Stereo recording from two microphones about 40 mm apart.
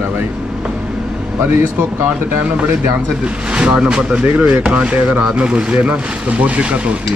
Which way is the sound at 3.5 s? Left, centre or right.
Right.